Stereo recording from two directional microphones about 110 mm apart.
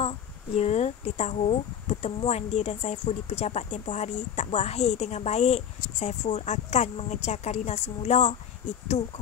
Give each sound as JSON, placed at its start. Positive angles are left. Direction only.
{"t": 0.0, "sound": "speech", "side_deg": 75}